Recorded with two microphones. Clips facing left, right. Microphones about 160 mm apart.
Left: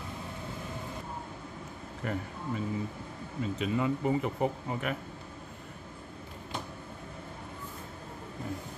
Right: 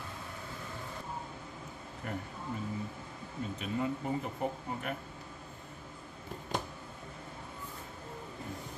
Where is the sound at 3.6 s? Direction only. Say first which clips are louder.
Left 5 dB; 90° left.